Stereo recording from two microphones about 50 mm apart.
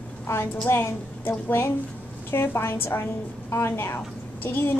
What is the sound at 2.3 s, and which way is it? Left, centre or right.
A woman's voice, left.